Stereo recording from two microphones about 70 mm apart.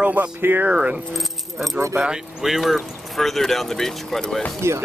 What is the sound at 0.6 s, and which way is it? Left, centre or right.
Speech, centre.